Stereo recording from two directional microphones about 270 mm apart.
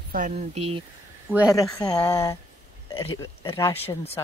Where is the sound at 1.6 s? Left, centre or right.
Centre.